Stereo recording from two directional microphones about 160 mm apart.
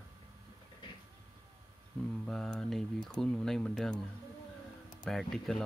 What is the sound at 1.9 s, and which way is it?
Speech, 5° left (ahead or behind).